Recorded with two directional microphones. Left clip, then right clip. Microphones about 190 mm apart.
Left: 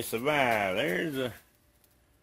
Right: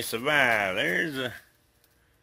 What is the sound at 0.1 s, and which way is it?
Speech, centre (ahead or behind).